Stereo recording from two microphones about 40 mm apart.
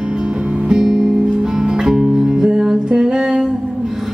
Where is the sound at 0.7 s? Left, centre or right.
Centre.